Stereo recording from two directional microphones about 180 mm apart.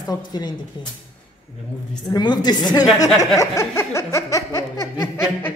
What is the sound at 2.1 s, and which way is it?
Speech, 25° left (ahead or behind).